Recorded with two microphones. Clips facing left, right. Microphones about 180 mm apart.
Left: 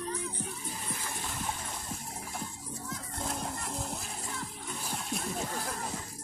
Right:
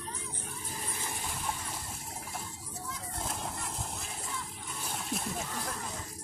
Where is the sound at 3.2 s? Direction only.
Centre (ahead or behind).